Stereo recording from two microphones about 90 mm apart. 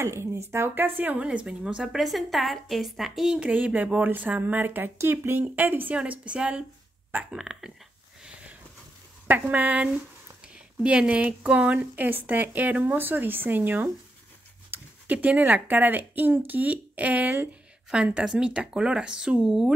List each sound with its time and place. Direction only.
0.0 s speech: 30° right (ahead or behind); by 3.3 s centre (ahead or behind)
3.3 s speech: 15° right (ahead or behind)
7.3 s a sound: 5° right (ahead or behind)
9.3 s speech: 20° right (ahead or behind)